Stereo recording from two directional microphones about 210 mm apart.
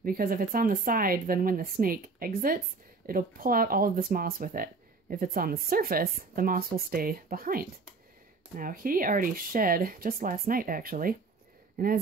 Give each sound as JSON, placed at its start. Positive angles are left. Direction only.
{"t": 0.0, "sound": "speech", "side_deg": -45}